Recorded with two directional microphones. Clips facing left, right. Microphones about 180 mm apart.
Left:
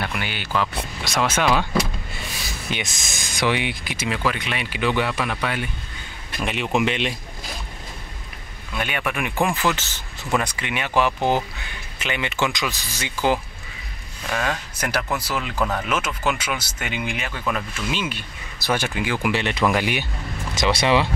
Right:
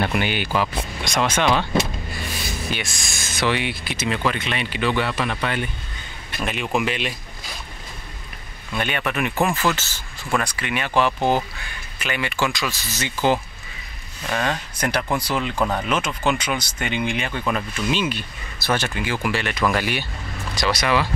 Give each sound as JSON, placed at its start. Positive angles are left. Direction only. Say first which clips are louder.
{"t": 0.0, "sound": "speech", "louder": "right 6 dB", "side_deg": -25}
{"t": 1.0, "sound": "speech", "louder": "right 1 dB", "side_deg": 5}
{"t": 2.7, "sound": "speech", "louder": "even", "side_deg": 20}
{"t": 6.8, "sound": "speech", "louder": "left 2 dB", "side_deg": 25}
{"t": 8.7, "sound": "speech", "louder": "right 2 dB", "side_deg": 5}